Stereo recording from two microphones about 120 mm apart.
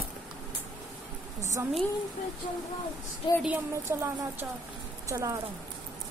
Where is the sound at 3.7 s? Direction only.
20° right (ahead or behind).